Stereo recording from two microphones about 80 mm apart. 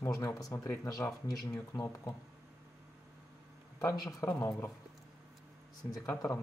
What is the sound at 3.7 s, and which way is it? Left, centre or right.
Speech, left.